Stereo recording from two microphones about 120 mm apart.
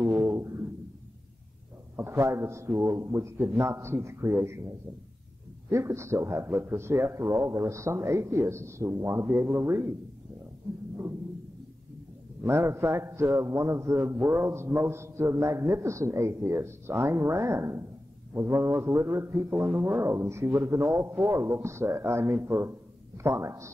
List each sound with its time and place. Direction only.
0.0 s a sound: 25° right (ahead or behind)
2.0 s a man's voice: 20° right (ahead or behind)
5.7 s a man's voice: 25° right (ahead or behind)
12.4 s a man's voice: 20° right (ahead or behind)